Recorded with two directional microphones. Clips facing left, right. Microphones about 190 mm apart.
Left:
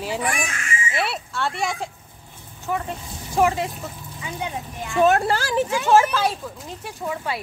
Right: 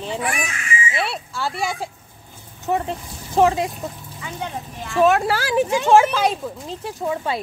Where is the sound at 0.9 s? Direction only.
Centre (ahead or behind).